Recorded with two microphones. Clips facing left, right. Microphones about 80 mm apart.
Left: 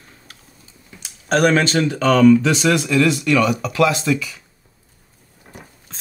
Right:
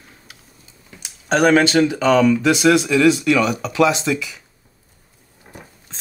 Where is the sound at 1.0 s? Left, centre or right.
Centre; by 4.1 s right.